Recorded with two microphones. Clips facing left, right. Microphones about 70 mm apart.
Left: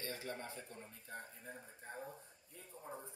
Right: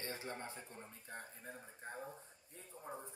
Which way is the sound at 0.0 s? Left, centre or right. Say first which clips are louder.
Even; right.